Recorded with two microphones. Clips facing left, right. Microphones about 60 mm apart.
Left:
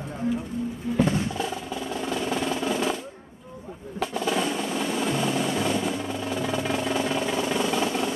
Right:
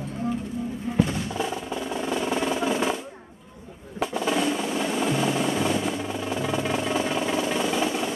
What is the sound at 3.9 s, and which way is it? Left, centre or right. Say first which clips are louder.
Drum roll: right 1 dB; centre.